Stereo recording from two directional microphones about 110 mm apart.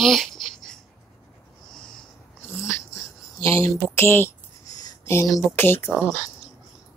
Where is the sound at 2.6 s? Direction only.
25° left (ahead or behind).